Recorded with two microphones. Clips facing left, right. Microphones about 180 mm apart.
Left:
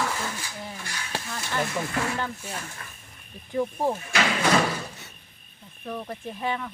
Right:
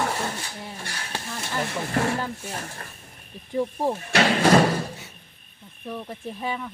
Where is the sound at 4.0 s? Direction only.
35° right (ahead or behind).